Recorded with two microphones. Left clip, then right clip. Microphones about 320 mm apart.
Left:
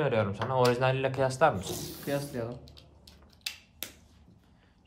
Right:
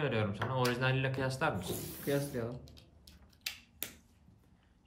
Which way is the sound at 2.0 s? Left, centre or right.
Centre.